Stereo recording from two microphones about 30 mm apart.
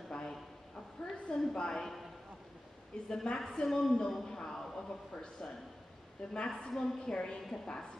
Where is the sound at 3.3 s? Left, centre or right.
Left.